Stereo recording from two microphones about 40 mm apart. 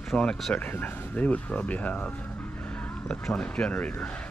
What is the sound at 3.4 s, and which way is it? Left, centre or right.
Speech, left.